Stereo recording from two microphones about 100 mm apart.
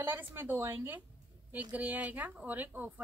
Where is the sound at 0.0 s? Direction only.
20° right (ahead or behind).